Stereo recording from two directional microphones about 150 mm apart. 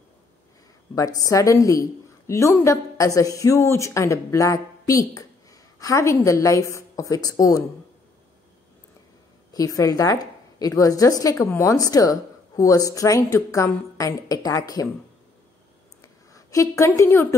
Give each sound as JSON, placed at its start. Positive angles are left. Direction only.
{"t": 0.9, "sound": "a woman's voice", "side_deg": 25}
{"t": 9.5, "sound": "a woman's voice", "side_deg": 25}
{"t": 16.0, "sound": "a sound", "side_deg": 20}